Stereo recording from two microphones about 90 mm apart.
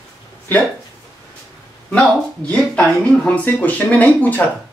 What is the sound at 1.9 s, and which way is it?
A woman's voice, 15° left (ahead or behind).